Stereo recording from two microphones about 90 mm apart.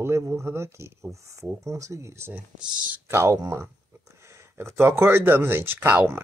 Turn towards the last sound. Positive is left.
turn(degrees=-25)  # may be behind; listen again after turning